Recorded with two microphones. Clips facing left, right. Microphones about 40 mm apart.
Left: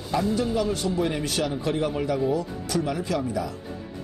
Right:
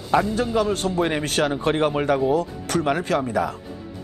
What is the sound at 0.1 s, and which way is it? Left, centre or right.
Speech, right.